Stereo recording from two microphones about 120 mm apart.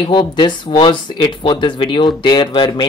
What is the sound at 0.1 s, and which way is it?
Speech, 50° left (ahead or behind).